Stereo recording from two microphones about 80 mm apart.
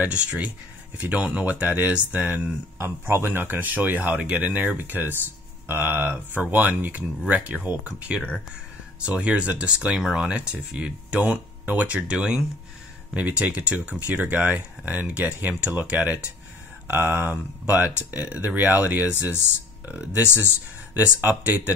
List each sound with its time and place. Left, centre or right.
0.0 s speech: centre
20.2 s speech: left
20.9 s speech: right